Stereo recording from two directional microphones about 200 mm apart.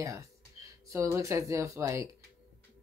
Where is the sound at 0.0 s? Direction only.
15° right (ahead or behind).